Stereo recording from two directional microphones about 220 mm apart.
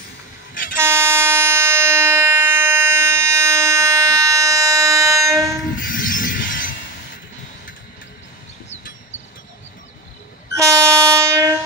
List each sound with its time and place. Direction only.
0.7 s train: 10° right (ahead or behind)
5.8 s a sound: 40° left (ahead or behind)
10.5 s train: 15° right (ahead or behind)